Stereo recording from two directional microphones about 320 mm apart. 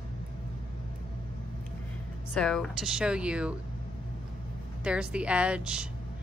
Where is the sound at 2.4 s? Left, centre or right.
Centre.